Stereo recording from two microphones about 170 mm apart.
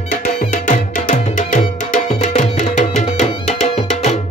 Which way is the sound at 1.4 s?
45° left (ahead or behind).